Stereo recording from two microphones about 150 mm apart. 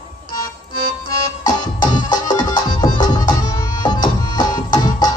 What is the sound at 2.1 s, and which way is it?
Music, 30° left (ahead or behind).